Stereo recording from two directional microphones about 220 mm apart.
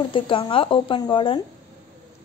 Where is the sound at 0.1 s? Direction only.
25° left (ahead or behind).